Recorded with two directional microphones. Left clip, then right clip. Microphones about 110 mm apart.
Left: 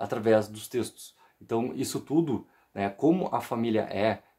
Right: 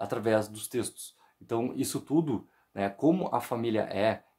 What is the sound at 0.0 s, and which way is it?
Speech, 30° right (ahead or behind).